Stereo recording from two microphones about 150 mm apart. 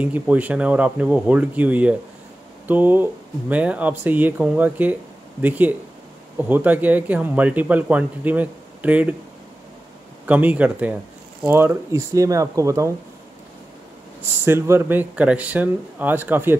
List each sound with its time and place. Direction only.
0.0 s speech: 10° right (ahead or behind)
10.2 s speech: 10° right (ahead or behind)
14.4 s speech: 15° right (ahead or behind)